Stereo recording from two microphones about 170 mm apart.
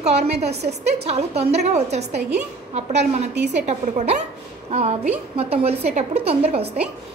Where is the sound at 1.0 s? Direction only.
40° right (ahead or behind).